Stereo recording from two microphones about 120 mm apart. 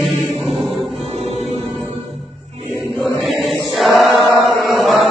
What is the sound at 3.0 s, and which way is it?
Chant, centre (ahead or behind).